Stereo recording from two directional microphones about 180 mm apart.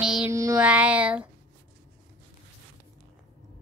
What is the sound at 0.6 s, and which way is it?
Speech, 5° right (ahead or behind).